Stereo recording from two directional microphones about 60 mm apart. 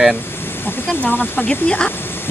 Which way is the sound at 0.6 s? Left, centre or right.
Left.